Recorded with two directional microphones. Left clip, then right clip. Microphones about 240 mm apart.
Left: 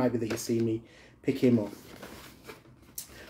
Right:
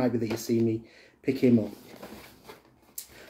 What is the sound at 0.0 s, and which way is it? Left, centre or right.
Speech, centre.